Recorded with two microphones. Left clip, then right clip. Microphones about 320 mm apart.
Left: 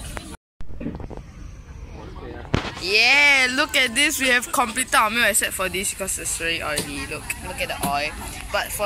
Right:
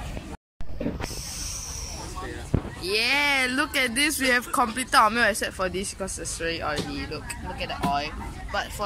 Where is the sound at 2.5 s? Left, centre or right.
Left.